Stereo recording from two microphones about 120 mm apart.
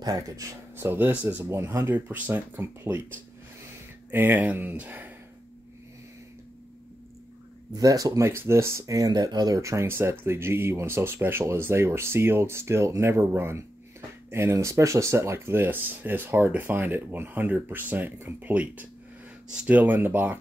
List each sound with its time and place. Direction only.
0.0 s speech: 30° right (ahead or behind)
7.7 s speech: 30° right (ahead or behind); by 20.3 s 15° right (ahead or behind)